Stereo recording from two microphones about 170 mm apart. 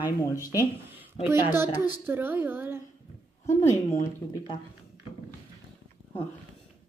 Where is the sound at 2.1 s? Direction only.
10° right (ahead or behind).